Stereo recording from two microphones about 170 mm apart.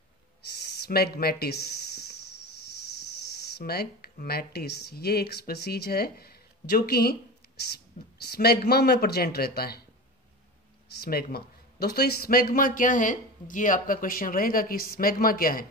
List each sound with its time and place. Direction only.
0.8 s speech: 65° left (ahead or behind)
3.5 s speech: 65° left (ahead or behind)
11.0 s a man's voice: 65° left (ahead or behind)